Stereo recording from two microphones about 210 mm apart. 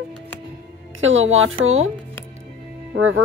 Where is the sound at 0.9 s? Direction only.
70° right (ahead or behind).